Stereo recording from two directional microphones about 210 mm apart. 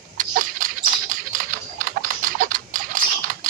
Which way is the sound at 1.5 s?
40° right (ahead or behind).